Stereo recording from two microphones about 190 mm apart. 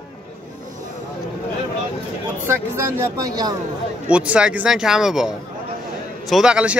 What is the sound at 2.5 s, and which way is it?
Speech, 10° right (ahead or behind).